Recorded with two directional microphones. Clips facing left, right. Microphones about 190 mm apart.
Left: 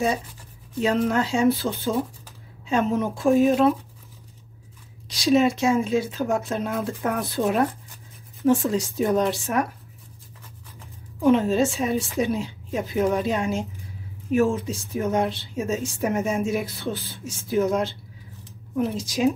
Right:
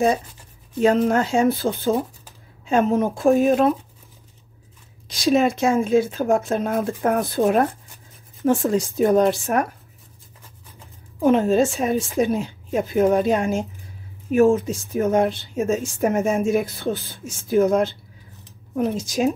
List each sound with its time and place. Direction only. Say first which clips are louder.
0.8 s speech: right 4 dB; 45° right (ahead or behind)
5.0 s speech: right 1 dB; 50° right (ahead or behind)
11.1 s speech: right 2 dB; 45° right (ahead or behind)